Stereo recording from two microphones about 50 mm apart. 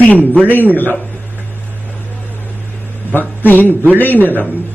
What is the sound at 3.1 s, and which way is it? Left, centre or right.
A man's voice, left.